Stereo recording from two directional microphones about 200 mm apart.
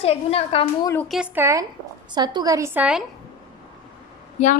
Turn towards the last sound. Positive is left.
turn(degrees=35)  # may be behind; listen again after turning